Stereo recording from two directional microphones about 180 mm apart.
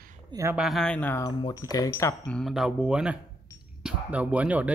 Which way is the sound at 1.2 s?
20° left (ahead or behind).